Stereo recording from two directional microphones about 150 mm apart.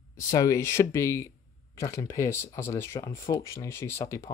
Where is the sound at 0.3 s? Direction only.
20° left (ahead or behind).